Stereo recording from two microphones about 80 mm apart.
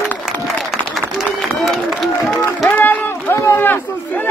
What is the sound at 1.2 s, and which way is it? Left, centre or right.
Run, centre.